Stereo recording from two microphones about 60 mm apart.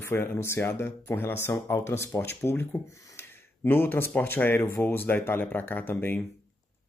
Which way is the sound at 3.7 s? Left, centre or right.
Left.